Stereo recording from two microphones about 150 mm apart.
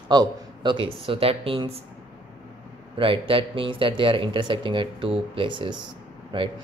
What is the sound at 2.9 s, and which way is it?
Speech, 35° right (ahead or behind).